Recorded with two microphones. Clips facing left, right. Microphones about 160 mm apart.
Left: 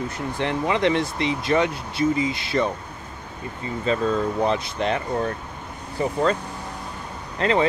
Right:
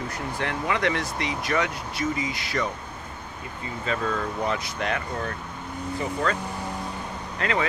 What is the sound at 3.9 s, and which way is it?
Speech, 25° left (ahead or behind).